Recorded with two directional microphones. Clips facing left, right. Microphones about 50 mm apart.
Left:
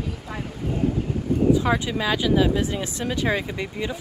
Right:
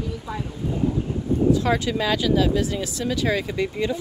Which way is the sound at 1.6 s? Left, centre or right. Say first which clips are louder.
Right 1 dB; centre.